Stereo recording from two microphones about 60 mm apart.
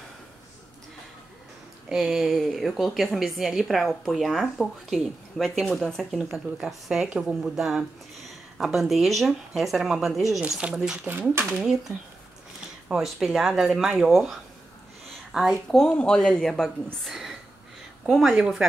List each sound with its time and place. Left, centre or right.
1.9 s a woman's voice: centre
6.1 s speech: centre
7.1 s a woman's voice: centre
11.1 s speech: right
13.0 s speech: centre
15.9 s speech: centre
17.1 s speech: centre